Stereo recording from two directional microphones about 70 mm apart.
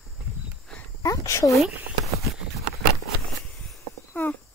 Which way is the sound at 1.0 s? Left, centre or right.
Left.